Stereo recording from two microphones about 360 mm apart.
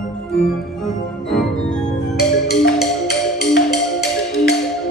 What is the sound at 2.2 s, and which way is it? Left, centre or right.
Music, left.